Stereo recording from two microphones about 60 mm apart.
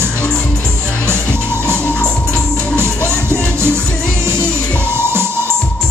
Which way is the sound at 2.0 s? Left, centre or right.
Centre.